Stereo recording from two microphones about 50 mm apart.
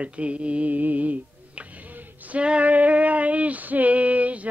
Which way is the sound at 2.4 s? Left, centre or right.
Right.